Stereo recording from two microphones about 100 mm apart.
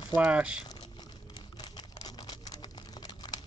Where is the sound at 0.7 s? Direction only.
45° left (ahead or behind).